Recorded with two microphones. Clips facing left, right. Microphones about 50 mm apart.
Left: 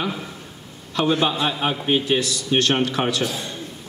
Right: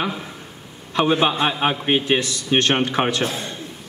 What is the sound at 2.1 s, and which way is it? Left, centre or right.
A man's voice, right.